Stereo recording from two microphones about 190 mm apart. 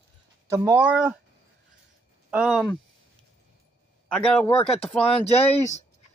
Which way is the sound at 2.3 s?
5° right (ahead or behind).